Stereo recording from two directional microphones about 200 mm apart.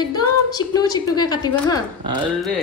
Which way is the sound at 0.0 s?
20° left (ahead or behind).